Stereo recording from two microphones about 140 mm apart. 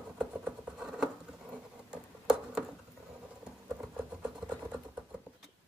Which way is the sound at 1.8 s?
5° right (ahead or behind).